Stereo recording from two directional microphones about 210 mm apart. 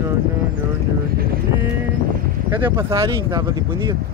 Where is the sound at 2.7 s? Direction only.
10° right (ahead or behind).